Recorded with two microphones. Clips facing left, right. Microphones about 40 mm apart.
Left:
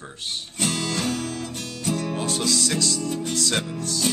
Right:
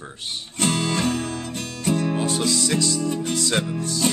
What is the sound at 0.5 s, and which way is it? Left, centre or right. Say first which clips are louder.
Music: right 4 dB; centre.